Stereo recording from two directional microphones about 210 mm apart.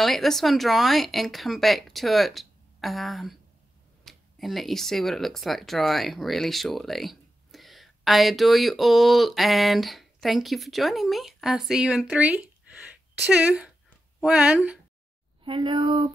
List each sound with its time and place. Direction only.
0.0 s speech: centre (ahead or behind)
15.4 s speech: 25° right (ahead or behind)